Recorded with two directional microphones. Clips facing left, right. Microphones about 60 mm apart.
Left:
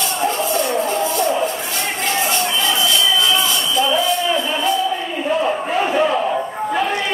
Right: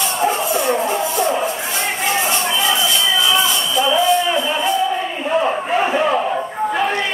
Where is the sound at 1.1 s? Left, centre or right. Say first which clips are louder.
Even; right.